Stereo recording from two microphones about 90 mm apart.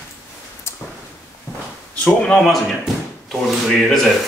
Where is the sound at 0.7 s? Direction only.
30° left (ahead or behind).